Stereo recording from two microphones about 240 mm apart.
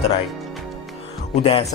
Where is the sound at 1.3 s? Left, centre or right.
Left.